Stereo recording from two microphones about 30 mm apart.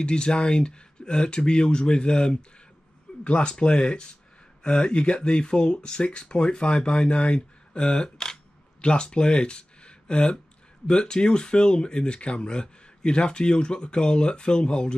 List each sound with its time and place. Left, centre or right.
0.0 s speech: left
3.1 s a sound: left
3.4 s speech: left
8.8 s speech: left